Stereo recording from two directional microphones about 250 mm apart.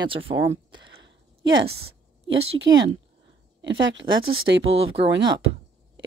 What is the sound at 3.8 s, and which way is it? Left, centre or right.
Speech, right.